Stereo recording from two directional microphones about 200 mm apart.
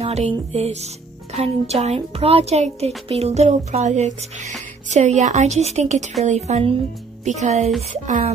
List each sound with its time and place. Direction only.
0.0 s speech: 30° right (ahead or behind)